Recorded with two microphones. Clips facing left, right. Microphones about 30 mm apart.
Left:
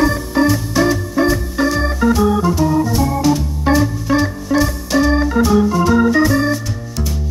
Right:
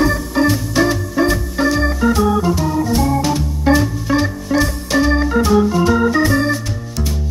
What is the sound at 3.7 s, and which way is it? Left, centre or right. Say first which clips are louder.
Organ: right 1 dB; centre.